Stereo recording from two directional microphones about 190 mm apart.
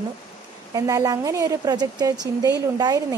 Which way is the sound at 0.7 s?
20° right (ahead or behind).